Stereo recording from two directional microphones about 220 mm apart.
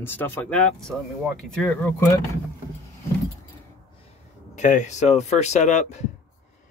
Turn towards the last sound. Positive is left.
turn(degrees=30)  # may be behind; listen again after turning